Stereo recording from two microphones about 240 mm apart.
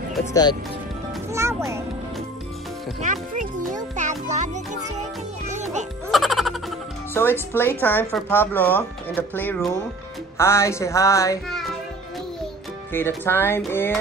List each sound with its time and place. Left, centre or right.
0.3 s speech: centre
1.3 s speech: centre
3.0 s a child's voice: right
5.5 s music: right
6.1 s music: centre
7.2 s speech: centre
11.4 s a child's voice: centre
12.9 s speech: centre